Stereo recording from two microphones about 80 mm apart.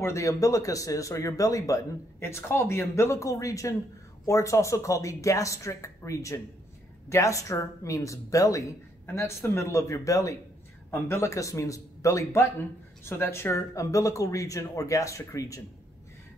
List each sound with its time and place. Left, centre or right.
0.0 s speech: left
10.9 s speech: left
12.4 s speech: left